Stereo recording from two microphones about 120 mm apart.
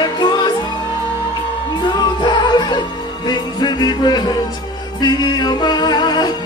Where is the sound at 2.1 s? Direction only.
40° left (ahead or behind).